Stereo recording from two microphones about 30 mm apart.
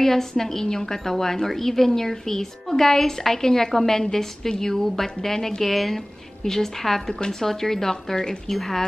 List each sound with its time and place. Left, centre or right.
0.0 s a woman's voice: centre